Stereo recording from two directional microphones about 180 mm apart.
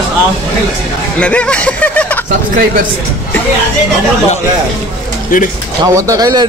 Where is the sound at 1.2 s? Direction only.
5° left (ahead or behind).